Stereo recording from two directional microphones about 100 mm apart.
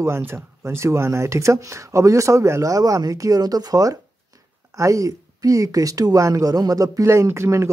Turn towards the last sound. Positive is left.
turn(degrees=-30)  # may be behind; listen again after turning